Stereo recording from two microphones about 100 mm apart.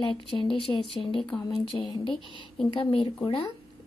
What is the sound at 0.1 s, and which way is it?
Speech, 55° left (ahead or behind).